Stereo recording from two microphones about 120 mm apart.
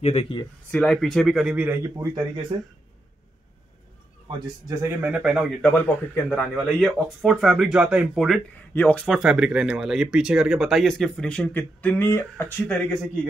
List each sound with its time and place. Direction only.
0.0 s speech: 55° left (ahead or behind)
0.7 s speech: 5° left (ahead or behind); by 1.8 s 10° right (ahead or behind)
1.8 s speech: 25° right (ahead or behind)
2.5 s speech: 40° right (ahead or behind)
4.8 s speech: 10° right (ahead or behind)
5.7 s a man's voice: 15° left (ahead or behind)
6.2 s speech: centre (ahead or behind)
8.5 s speech: 15° left (ahead or behind)
9.0 s speech: 5° right (ahead or behind); by 12.8 s 10° left (ahead or behind)